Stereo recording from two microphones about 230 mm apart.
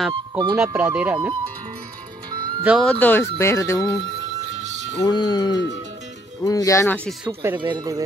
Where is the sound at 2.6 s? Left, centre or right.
Centre.